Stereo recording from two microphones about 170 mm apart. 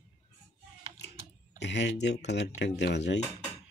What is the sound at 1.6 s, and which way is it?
Speech, 90° left.